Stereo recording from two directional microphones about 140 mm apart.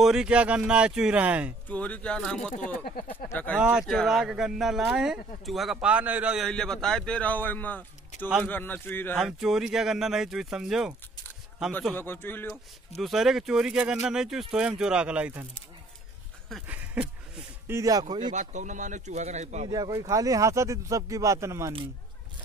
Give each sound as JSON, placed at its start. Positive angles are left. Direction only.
{"t": 0.0, "sound": "speech", "side_deg": -5}
{"t": 1.7, "sound": "speech", "side_deg": 10}
{"t": 3.5, "sound": "speech", "side_deg": -5}
{"t": 6.4, "sound": "speech", "side_deg": 5}
{"t": 9.1, "sound": "speech", "side_deg": -5}
{"t": 11.9, "sound": "speech", "side_deg": 15}
{"t": 13.0, "sound": "speech", "side_deg": 0}
{"t": 16.6, "sound": "a sound", "side_deg": -10}
{"t": 17.7, "sound": "speech", "side_deg": -25}
{"t": 18.3, "sound": "a man's voice", "side_deg": -60}
{"t": 19.7, "sound": "speech", "side_deg": -25}